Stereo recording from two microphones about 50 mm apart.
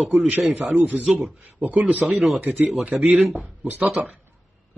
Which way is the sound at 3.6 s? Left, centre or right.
Right.